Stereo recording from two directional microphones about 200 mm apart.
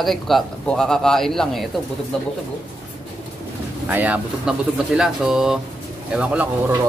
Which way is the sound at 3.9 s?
10° right (ahead or behind).